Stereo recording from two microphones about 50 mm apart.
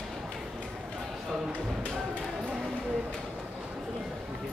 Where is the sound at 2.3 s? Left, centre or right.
Centre.